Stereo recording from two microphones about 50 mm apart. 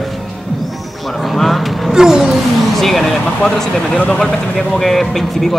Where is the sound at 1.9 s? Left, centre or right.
Centre.